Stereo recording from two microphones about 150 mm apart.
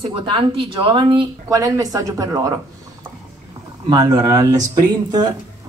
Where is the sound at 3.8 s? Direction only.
25° right (ahead or behind).